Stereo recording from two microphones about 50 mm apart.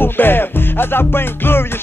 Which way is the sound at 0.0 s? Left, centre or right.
Left.